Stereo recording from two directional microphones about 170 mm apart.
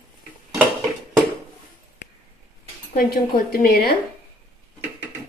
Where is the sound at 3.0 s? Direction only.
65° left (ahead or behind).